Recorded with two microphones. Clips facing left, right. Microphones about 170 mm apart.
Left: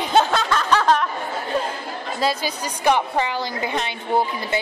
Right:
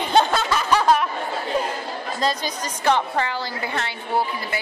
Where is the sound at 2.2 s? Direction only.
10° left (ahead or behind).